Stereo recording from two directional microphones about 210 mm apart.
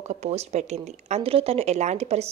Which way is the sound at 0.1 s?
30° right (ahead or behind).